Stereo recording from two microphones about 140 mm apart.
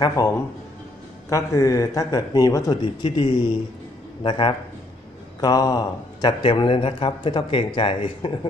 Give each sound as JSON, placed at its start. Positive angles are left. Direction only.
{"t": 0.0, "sound": "a man's voice", "side_deg": 25}
{"t": 1.3, "sound": "a man's voice", "side_deg": 25}
{"t": 5.4, "sound": "speech", "side_deg": 25}